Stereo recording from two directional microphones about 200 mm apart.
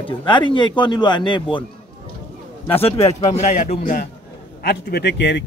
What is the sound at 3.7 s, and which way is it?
A man's voice, 45° left (ahead or behind).